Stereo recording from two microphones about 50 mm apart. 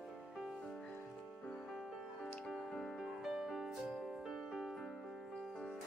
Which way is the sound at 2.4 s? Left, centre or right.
Centre.